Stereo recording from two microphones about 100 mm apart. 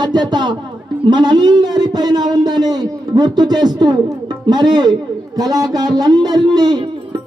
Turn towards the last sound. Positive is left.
turn(degrees=-45)  # may be behind; listen again after turning